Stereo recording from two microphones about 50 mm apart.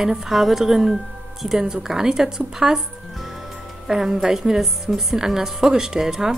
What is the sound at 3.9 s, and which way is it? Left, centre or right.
A woman's voice, centre.